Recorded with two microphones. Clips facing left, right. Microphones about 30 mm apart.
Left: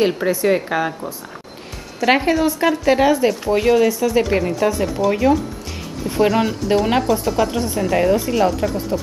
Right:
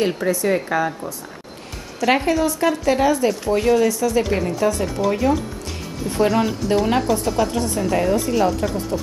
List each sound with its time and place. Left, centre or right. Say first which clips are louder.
0.0 s a woman's voice: left 3 dB; centre
4.7 s speech: left 2 dB; centre